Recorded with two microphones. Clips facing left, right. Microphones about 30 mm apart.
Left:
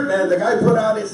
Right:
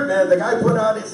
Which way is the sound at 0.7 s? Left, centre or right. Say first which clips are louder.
Left 1 dB; centre.